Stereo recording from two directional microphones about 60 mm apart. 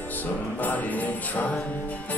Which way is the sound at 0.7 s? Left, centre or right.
Left.